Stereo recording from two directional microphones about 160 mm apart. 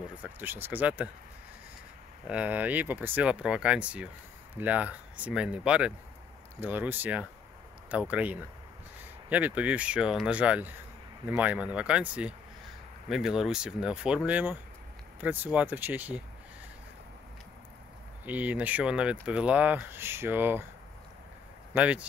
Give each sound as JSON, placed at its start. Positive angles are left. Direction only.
{"t": 0.2, "sound": "speech", "side_deg": -15}
{"t": 2.2, "sound": "speech", "side_deg": -10}
{"t": 18.2, "sound": "speech", "side_deg": -10}
{"t": 21.7, "sound": "speech", "side_deg": -10}